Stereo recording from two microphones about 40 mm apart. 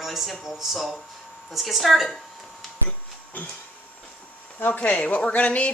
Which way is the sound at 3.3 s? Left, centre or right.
Left.